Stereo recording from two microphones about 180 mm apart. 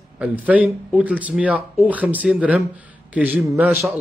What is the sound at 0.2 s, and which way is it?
Speech, 10° right (ahead or behind).